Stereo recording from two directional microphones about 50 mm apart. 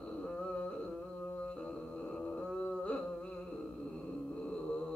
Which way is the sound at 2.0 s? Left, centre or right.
Left.